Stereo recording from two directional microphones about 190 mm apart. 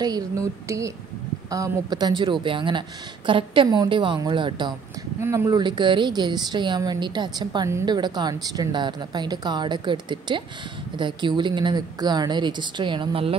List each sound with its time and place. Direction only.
0.0 s a woman's voice: 20° right (ahead or behind)